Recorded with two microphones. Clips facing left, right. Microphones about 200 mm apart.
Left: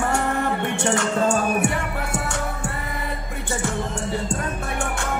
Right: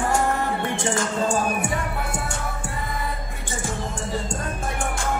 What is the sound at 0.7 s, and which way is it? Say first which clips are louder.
Music: left 3 dB; 70° left (ahead or behind).